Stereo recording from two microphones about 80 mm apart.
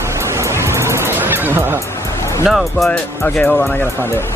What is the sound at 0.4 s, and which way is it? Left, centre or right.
Music, right.